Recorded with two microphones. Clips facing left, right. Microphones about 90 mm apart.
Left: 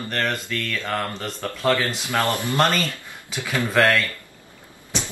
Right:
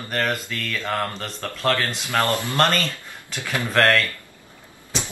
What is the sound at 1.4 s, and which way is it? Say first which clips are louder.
Speech: left 1 dB; 15° left (ahead or behind).